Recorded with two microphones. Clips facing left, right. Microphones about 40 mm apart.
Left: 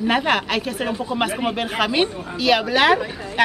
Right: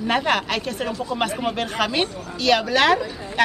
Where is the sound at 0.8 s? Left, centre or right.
Left.